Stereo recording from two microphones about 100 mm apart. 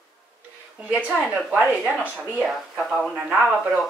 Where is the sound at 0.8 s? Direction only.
10° right (ahead or behind).